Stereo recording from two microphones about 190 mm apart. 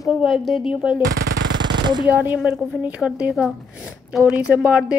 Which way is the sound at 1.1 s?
60° right (ahead or behind).